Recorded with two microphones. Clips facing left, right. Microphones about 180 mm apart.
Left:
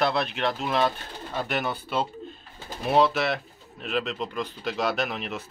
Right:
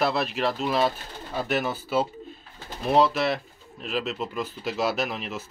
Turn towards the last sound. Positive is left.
turn(degrees=0)  # may be behind; listen again after turning